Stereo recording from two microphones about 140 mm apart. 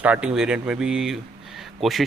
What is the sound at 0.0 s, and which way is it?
Speech, 10° right (ahead or behind).